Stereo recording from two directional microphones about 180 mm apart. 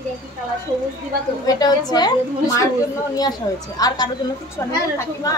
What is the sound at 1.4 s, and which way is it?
Speech, 20° left (ahead or behind).